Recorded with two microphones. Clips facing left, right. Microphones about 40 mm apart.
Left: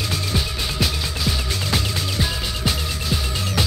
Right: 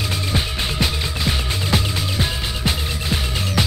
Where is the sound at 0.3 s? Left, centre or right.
Right.